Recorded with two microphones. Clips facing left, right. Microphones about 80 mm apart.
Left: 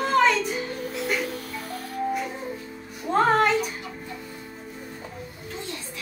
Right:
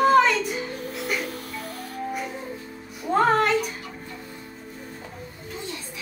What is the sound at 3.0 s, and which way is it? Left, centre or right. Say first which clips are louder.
Music: even; centre.